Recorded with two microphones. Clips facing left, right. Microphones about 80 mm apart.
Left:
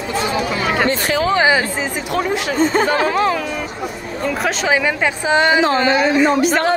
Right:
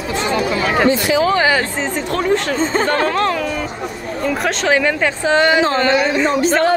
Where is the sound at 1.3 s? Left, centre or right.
Centre.